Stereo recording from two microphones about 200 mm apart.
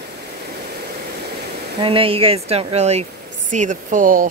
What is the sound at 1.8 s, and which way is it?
Speech, 25° right (ahead or behind).